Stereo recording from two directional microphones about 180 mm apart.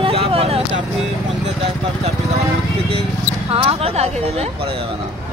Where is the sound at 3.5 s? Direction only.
35° right (ahead or behind).